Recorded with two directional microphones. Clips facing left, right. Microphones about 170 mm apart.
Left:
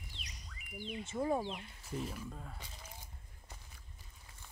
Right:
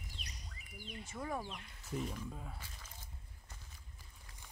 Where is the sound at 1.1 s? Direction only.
25° left (ahead or behind).